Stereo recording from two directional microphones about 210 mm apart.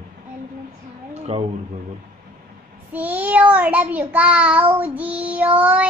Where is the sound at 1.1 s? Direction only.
30° right (ahead or behind).